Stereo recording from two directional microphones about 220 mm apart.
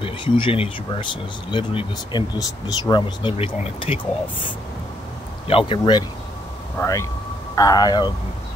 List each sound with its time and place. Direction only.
0.0 s speech: 25° left (ahead or behind)
5.5 s speech: 25° left (ahead or behind)